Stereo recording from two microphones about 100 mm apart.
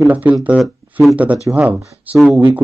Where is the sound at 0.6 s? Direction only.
Centre (ahead or behind).